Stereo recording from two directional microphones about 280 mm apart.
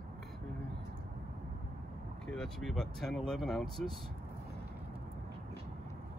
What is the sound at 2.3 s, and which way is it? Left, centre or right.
Speech, centre.